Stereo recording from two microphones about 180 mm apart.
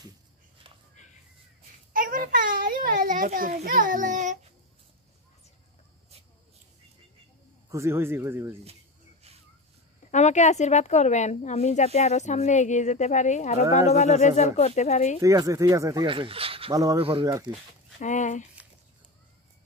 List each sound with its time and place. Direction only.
2.0 s a child's voice: 50° right (ahead or behind)
7.7 s speech: 15° right (ahead or behind)
10.1 s speech: 40° left (ahead or behind)
15.2 s speech: 20° right (ahead or behind)
16.1 s speech: 30° right (ahead or behind)
16.7 s speech: 20° right (ahead or behind)
17.0 s speech: 30° right (ahead or behind)
18.0 s speech: 45° left (ahead or behind)